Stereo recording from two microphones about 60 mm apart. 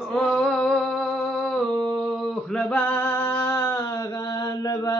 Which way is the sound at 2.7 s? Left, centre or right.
Left.